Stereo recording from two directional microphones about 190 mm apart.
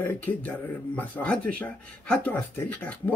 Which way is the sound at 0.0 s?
10° left (ahead or behind).